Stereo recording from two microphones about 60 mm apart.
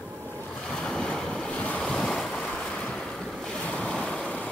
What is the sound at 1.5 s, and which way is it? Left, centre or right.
Waves, left.